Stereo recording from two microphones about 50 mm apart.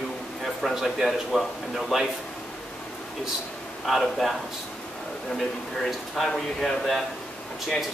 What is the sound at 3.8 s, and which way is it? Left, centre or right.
Speech, centre.